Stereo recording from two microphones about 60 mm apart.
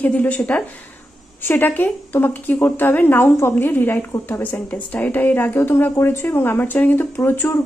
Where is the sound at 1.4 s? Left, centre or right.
Left.